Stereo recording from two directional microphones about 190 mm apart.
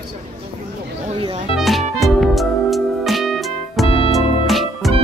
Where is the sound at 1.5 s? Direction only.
Centre (ahead or behind).